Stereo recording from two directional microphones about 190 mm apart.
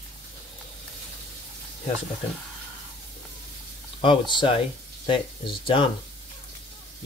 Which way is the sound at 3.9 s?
25° left (ahead or behind).